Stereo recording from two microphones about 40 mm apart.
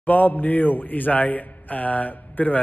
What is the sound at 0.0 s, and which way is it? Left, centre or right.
A man's voice, left.